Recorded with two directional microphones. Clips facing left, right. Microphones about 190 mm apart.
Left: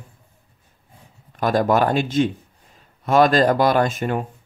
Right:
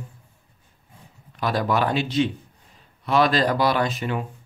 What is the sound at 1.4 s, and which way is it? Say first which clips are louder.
Speech: left 5 dB; 45° left (ahead or behind).